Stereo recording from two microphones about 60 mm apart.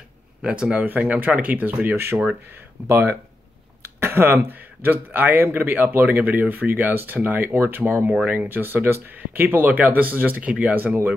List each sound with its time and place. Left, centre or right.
0.4 s speech: centre
2.9 s speech: right